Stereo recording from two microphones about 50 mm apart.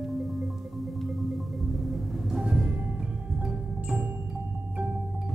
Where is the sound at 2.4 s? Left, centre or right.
Centre.